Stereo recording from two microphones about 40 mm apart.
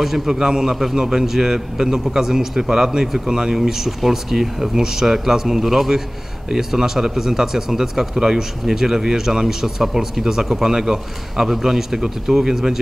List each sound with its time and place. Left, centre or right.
0.0 s a man's voice: centre
0.4 s speech: centre